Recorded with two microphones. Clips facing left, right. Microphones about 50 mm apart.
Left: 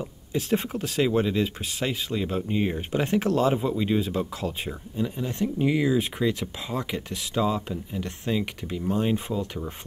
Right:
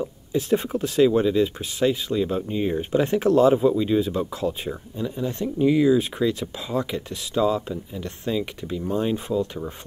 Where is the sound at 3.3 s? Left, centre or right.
Right.